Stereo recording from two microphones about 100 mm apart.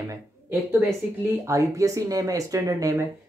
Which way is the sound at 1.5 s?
35° right (ahead or behind).